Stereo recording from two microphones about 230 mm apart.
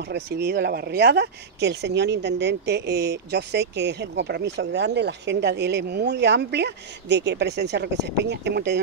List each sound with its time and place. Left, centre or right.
0.1 s speech: right